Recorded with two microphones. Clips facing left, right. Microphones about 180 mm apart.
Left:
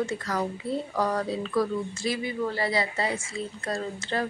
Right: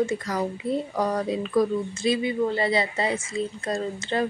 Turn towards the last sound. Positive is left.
turn(degrees=-20)  # may be behind; listen again after turning